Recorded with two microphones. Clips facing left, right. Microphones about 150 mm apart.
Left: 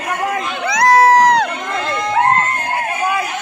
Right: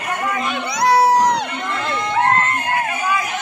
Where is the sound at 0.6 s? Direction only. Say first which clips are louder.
Left 4 dB; 90° left.